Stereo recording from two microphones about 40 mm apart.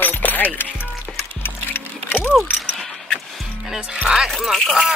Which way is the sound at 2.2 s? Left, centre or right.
Centre.